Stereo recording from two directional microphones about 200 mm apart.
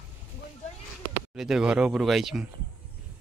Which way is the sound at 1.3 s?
5° right (ahead or behind).